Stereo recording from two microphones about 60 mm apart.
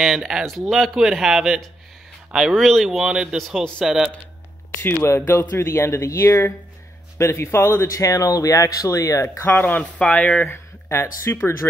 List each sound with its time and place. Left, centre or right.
0.0 s speech: centre
2.5 s speech: centre
3.1 s speech: centre
3.3 s speech: centre
4.8 s speech: left
5.6 s speech: left
9.5 s speech: left
10.5 s speech: left